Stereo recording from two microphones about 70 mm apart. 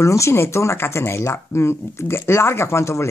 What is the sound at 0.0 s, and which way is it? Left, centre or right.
Speech, left.